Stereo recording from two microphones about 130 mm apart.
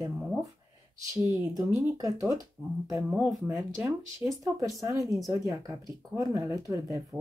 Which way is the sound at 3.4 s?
20° right (ahead or behind).